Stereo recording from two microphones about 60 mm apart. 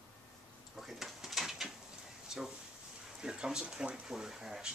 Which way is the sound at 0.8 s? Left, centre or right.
Centre.